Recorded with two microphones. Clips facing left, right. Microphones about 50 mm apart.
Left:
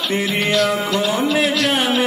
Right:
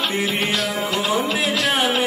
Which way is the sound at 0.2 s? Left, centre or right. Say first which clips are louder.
Left 2 dB; centre.